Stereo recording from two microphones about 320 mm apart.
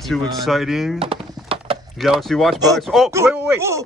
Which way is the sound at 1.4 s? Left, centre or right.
Centre.